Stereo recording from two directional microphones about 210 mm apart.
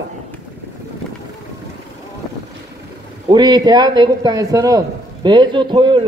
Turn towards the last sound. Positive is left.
turn(degrees=-20)  # may be behind; listen again after turning